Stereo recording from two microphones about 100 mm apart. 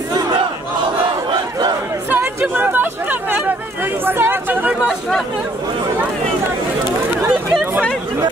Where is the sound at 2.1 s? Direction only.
20° right (ahead or behind).